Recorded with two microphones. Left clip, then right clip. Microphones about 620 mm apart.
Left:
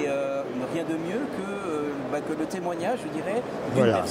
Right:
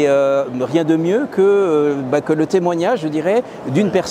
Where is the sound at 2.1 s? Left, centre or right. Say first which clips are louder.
Right 15 dB; right.